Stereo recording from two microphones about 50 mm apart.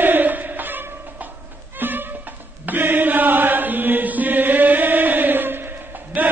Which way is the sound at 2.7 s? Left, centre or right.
Right.